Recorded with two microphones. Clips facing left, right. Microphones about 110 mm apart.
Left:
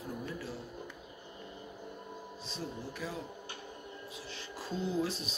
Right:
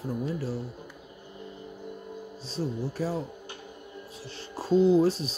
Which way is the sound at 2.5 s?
40° right (ahead or behind).